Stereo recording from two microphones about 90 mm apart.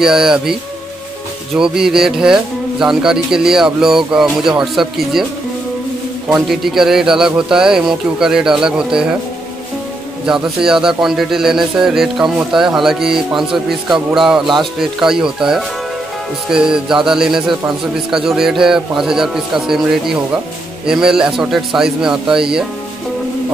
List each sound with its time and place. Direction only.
0.0 s a man's voice: 5° right (ahead or behind)
1.6 s a man's voice: 5° right (ahead or behind)
6.2 s a man's voice: 5° right (ahead or behind)
10.2 s a man's voice: 5° right (ahead or behind)